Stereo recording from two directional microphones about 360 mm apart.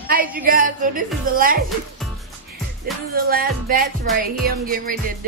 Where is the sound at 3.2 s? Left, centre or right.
Right.